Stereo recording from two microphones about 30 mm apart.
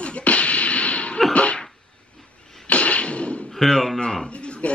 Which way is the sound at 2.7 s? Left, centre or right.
Left.